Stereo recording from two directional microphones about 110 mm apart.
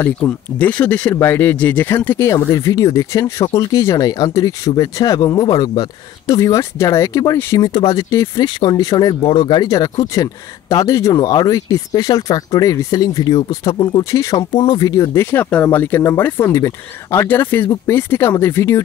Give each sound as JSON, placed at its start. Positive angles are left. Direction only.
{"t": 0.0, "sound": "speech", "side_deg": 15}
{"t": 1.1, "sound": "speech", "side_deg": 25}
{"t": 7.5, "sound": "speech", "side_deg": 40}
{"t": 8.4, "sound": "speech", "side_deg": 40}
{"t": 9.2, "sound": "speech", "side_deg": 45}
{"t": 9.7, "sound": "speech", "side_deg": 30}
{"t": 14.1, "sound": "speech", "side_deg": 30}
{"t": 14.5, "sound": "speech", "side_deg": 40}
{"t": 15.3, "sound": "speech", "side_deg": 15}